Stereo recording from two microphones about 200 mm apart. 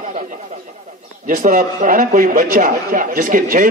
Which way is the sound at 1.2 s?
40° right (ahead or behind).